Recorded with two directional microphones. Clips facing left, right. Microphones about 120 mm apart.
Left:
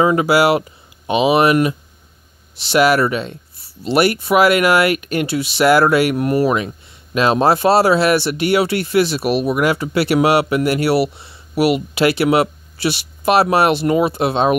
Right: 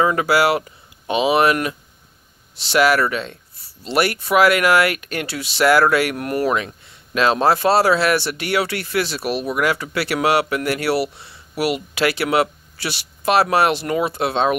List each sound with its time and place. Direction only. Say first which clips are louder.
0.0 s speech: left 3 dB; 15° left (ahead or behind)